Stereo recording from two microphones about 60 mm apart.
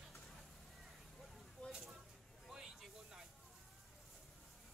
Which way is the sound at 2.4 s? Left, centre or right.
Centre.